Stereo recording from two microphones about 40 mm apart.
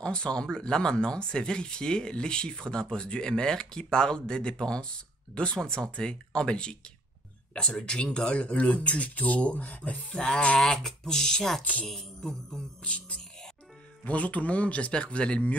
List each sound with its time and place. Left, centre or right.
0.0 s speech: left
10.3 s speech: left
10.6 s speech: centre
11.8 s music: centre
12.2 s speech: centre
12.8 s speech: left